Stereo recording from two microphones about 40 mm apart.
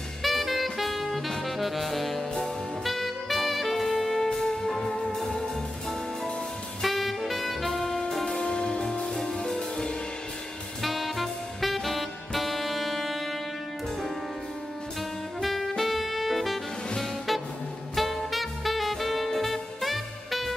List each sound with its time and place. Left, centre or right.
0.2 s music: centre
1.3 s saxophone: centre
6.8 s saxophone: centre
8.1 s music: centre
8.4 s music: centre
10.8 s saxophone: centre
15.4 s saxophone: centre
17.9 s music: centre